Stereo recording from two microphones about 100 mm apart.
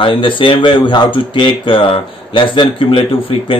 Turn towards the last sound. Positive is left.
turn(degrees=60)  # may be behind; listen again after turning